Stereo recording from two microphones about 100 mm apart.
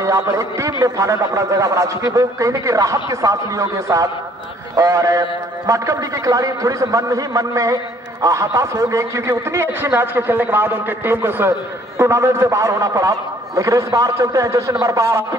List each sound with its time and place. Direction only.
0.0 s a man's voice: 30° right (ahead or behind)